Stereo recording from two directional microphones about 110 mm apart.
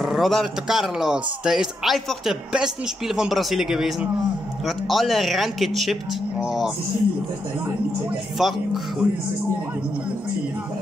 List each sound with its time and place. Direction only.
0.0 s a man's voice: centre (ahead or behind)
8.4 s a man's voice: centre (ahead or behind)